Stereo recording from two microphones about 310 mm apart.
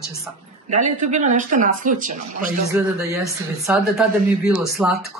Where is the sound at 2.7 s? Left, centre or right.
Centre.